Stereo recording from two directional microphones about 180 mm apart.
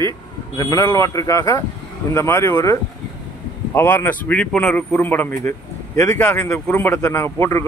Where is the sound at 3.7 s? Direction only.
10° left (ahead or behind).